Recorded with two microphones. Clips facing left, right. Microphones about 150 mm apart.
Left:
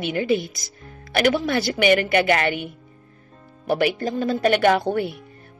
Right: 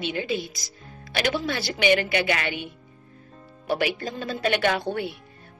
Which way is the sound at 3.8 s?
45° left (ahead or behind).